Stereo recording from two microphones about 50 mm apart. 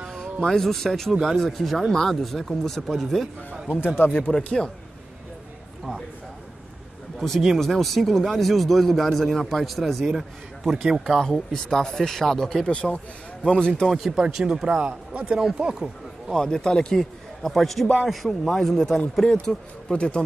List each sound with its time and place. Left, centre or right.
0.1 s a man's voice: centre
3.8 s speech: left
4.4 s a man's voice: centre
7.2 s a man's voice: centre
11.1 s a man's voice: centre
13.8 s a man's voice: centre
14.1 s speech: centre
14.8 s speech: right
16.3 s a man's voice: centre
19.9 s a man's voice: centre